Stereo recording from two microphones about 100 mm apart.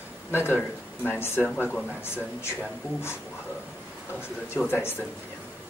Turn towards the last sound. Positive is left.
turn(degrees=20)  # may be behind; listen again after turning